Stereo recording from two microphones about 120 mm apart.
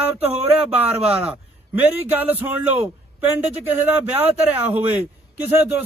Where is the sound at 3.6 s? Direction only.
15° right (ahead or behind).